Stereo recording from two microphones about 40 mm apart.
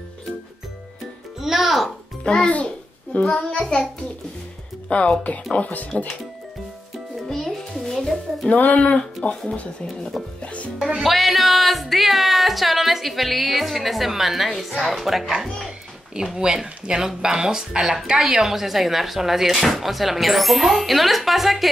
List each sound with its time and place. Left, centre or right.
1.4 s music: centre
2.2 s babbling: left
3.3 s child singing: left
4.8 s speech: left
7.2 s music: centre
8.5 s speech: left
10.4 s music: left
11.0 s speech: centre
16.5 s speech: right; by 21.6 s centre